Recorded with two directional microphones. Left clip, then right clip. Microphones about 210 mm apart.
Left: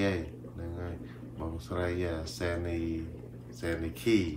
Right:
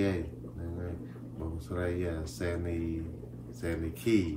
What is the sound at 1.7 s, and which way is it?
Speech, 10° left (ahead or behind).